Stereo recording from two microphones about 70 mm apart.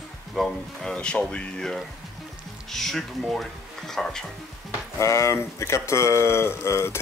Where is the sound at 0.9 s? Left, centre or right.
Centre.